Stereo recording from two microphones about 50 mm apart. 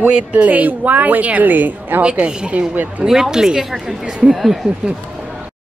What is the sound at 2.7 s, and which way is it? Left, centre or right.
Speech, right.